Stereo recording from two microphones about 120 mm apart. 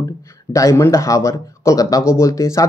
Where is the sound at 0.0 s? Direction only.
25° left (ahead or behind).